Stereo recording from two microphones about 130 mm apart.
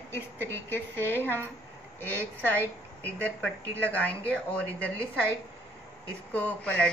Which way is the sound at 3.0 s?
10° left (ahead or behind).